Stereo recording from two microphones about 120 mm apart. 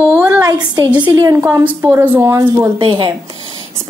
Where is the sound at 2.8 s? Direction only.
40° right (ahead or behind).